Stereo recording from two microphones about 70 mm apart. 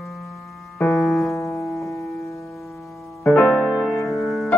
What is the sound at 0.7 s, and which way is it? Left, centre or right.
Music, centre.